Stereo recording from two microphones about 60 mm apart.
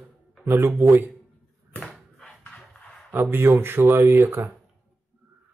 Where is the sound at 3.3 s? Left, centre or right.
Right.